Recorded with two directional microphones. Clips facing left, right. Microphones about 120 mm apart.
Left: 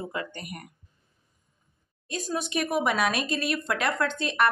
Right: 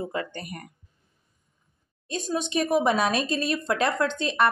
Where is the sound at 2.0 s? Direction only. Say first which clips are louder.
Right 2 dB; 25° right (ahead or behind).